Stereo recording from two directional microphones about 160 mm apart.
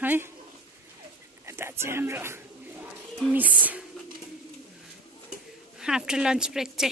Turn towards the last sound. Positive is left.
turn(degrees=-5)  # may be behind; listen again after turning